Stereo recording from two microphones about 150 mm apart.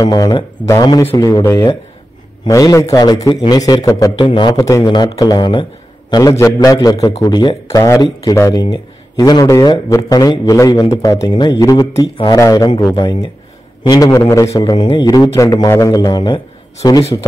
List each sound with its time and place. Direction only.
0.0 s a man's voice: 25° left (ahead or behind)
13.8 s a man's voice: 25° left (ahead or behind)